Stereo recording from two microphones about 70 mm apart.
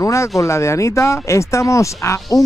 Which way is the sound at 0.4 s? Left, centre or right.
Left.